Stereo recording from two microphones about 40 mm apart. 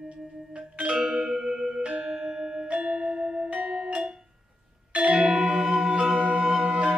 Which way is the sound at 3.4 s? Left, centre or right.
Right.